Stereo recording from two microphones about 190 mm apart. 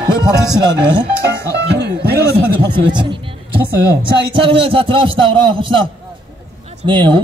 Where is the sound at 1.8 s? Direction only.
65° right (ahead or behind).